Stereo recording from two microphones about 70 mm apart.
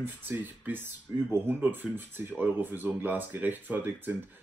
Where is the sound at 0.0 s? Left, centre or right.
Right.